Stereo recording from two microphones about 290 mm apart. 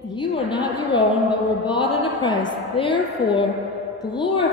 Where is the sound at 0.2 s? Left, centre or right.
Centre.